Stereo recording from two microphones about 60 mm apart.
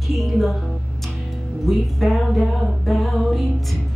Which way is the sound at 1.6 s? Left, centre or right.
Centre.